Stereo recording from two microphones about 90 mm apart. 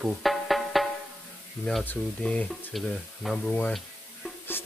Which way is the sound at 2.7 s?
Centre (ahead or behind).